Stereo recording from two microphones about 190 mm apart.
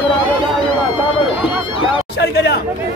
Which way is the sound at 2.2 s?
65° left (ahead or behind).